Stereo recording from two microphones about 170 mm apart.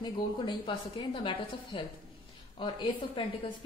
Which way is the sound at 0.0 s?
25° left (ahead or behind).